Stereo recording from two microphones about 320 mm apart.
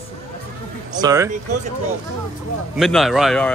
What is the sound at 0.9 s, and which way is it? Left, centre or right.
Speech, centre.